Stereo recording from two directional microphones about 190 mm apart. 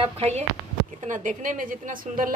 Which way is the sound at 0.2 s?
35° right (ahead or behind).